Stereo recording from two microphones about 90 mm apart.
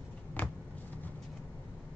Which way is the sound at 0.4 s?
20° left (ahead or behind).